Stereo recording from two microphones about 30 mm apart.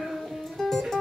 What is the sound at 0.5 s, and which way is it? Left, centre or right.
Music, centre.